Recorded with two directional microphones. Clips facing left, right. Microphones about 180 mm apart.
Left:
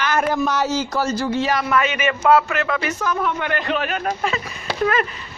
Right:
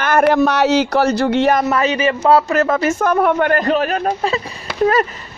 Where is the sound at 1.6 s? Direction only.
40° right (ahead or behind).